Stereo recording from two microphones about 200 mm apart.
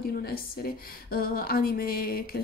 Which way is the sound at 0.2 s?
50° left (ahead or behind).